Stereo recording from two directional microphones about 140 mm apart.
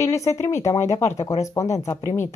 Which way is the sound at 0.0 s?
20° left (ahead or behind).